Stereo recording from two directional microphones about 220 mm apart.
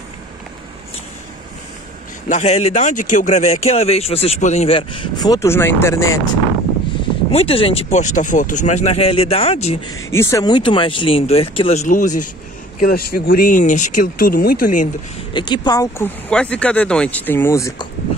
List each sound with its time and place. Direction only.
2.2 s speech: 30° left (ahead or behind); by 6.0 s 10° left (ahead or behind)
7.2 s speech: 25° left (ahead or behind)
9.9 s speech: 15° left (ahead or behind); by 12.1 s 35° left (ahead or behind)
12.8 s speech: 45° left (ahead or behind)
15.3 s speech: 20° left (ahead or behind)
16.3 s speech: 5° left (ahead or behind)